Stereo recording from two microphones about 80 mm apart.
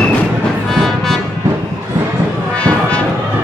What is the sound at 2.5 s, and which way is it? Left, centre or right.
Music, centre.